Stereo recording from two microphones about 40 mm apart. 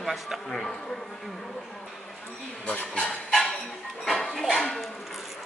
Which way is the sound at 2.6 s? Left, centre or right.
Left.